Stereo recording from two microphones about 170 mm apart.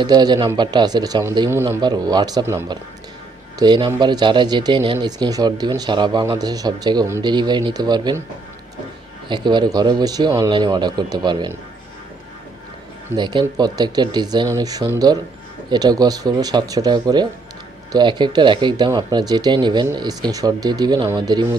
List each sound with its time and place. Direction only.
0.0 s speech: 25° right (ahead or behind)
9.3 s speech: 25° right (ahead or behind)
13.1 s speech: 25° right (ahead or behind)